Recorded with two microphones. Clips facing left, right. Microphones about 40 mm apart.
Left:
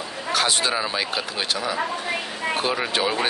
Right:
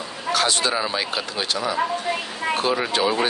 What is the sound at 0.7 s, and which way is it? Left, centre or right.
A man's voice, centre.